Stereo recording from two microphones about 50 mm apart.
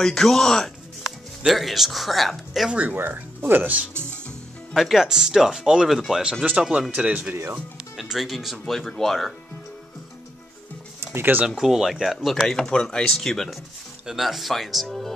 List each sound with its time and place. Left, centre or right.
0.0 s speech: centre
1.5 s speech: centre
2.7 s speech: right
3.0 s speech: right
4.7 s speech: centre
6.9 s speech: right
7.7 s speech: centre
11.4 s speech: centre
12.4 s speech: centre
14.0 s speech: centre